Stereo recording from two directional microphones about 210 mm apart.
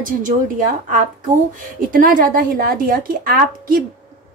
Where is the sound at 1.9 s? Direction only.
40° right (ahead or behind).